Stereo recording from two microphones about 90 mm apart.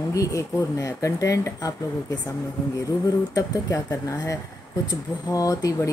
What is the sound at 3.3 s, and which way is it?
Speech, 40° left (ahead or behind).